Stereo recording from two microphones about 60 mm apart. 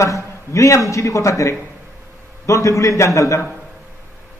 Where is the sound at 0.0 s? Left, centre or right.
Left.